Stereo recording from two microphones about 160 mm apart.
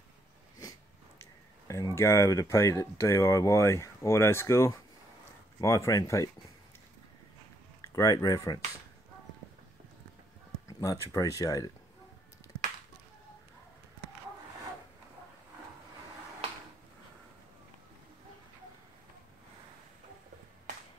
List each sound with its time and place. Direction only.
0.6 s a sound: 25° left (ahead or behind)
1.7 s speech: 20° left (ahead or behind)
7.8 s speech: 20° left (ahead or behind)
10.7 s speech: 20° left (ahead or behind)